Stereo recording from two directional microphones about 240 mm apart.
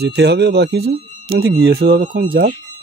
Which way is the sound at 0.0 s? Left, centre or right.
Right.